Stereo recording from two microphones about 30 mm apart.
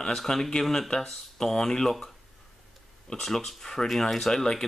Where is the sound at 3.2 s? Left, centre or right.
Centre.